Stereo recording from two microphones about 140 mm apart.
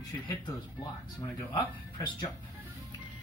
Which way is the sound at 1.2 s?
30° left (ahead or behind).